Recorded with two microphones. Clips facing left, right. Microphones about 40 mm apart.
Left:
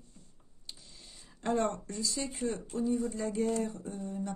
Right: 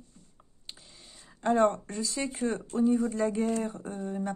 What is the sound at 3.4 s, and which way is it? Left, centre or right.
Speech, right.